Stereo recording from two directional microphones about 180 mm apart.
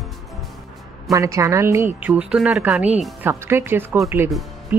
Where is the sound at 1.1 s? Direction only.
15° right (ahead or behind).